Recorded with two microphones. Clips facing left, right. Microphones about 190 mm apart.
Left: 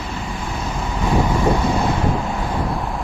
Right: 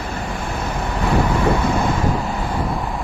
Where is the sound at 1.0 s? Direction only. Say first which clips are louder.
Even; 60° right (ahead or behind).